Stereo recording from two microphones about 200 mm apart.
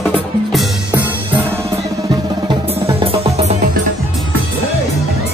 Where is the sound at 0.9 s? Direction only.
10° right (ahead or behind).